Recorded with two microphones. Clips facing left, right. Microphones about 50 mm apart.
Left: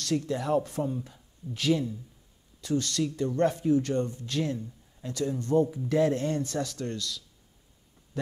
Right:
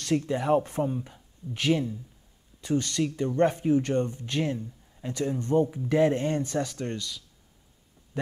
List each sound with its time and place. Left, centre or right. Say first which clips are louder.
0.0 s speech: right 2 dB; right